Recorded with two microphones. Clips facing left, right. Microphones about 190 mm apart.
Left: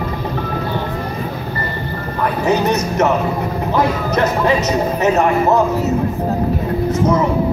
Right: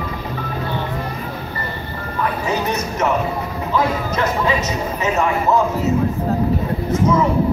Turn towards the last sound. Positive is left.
turn(degrees=65)  # may be behind; listen again after turning